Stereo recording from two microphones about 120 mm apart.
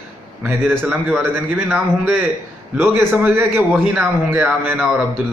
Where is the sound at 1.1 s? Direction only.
15° right (ahead or behind).